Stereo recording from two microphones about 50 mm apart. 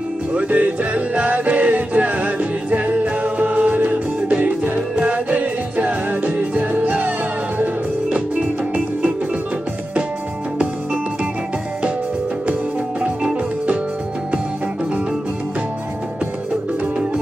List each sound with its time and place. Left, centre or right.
0.3 s music: right
13.0 s music: right